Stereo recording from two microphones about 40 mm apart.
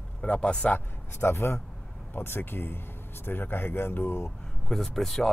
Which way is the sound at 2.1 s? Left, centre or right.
Left.